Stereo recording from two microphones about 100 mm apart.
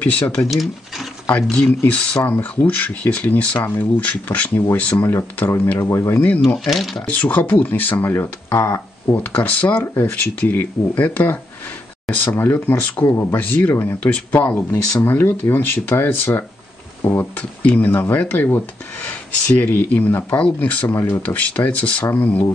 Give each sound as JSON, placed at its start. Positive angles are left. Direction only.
{"t": 0.0, "sound": "speech", "side_deg": 10}
{"t": 0.5, "sound": "speech", "side_deg": 0}
{"t": 6.5, "sound": "speech", "side_deg": 5}
{"t": 7.1, "sound": "speech", "side_deg": 15}